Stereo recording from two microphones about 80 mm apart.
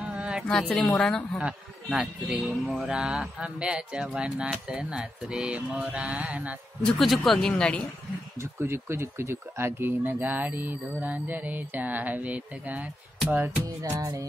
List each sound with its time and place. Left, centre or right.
0.0 s a sound: centre
0.5 s a woman's voice: centre
6.8 s speech: centre
7.5 s a woman's voice: centre
8.4 s speech: right
13.8 s music: right